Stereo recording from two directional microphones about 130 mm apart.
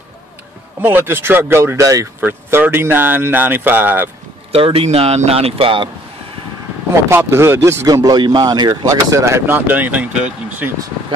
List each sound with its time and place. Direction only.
0.7 s speech: 15° right (ahead or behind)
2.1 s speech: 15° right (ahead or behind)
4.5 s speech: 45° right (ahead or behind)
7.1 s speech: 20° right (ahead or behind)